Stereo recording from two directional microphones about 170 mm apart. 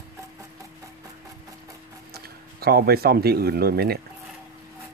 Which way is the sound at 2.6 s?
65° right (ahead or behind).